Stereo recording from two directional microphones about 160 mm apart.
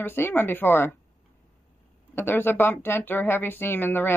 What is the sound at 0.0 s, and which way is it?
Speech, 15° left (ahead or behind).